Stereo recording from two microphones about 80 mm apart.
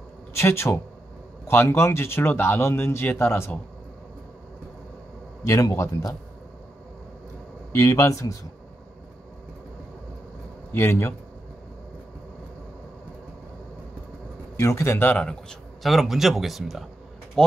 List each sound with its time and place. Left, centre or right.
0.3 s speech: left
5.4 s a man's voice: left
7.7 s a man's voice: left
10.7 s speech: left
14.6 s a man's voice: left
15.8 s speech: centre
17.4 s a sound: centre